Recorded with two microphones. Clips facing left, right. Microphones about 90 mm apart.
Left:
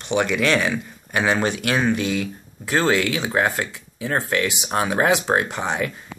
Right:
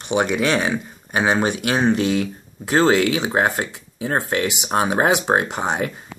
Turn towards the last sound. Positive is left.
turn(degrees=-25)  # may be behind; listen again after turning